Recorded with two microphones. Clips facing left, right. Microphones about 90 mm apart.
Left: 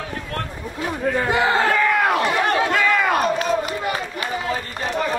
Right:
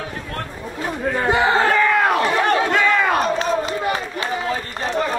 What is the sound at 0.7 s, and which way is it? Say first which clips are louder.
Chatter: left 1 dB; 45° right (ahead or behind).